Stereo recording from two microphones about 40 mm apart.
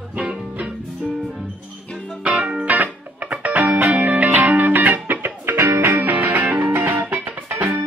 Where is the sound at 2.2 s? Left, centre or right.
Right.